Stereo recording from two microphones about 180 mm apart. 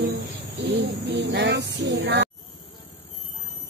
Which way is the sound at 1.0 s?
70° right (ahead or behind).